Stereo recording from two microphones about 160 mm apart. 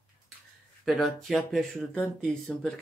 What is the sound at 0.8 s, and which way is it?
Speech, centre (ahead or behind).